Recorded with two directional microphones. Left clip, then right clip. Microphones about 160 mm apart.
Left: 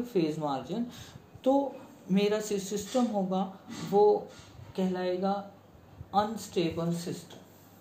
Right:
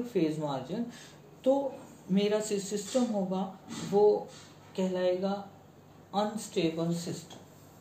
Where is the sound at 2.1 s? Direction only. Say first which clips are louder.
Left 1 dB; 40° left (ahead or behind).